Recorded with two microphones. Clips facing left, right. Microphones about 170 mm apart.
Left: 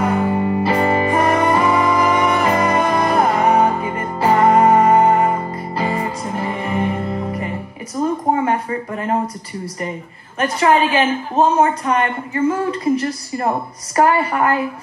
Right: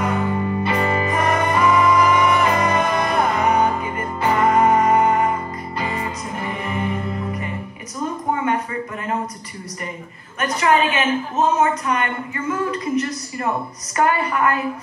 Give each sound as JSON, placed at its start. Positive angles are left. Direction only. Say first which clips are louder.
{"t": 0.0, "sound": "music", "louder": "left 4 dB", "side_deg": 30}
{"t": 10.4, "sound": "a woman's voice", "louder": "left 3 dB", "side_deg": 30}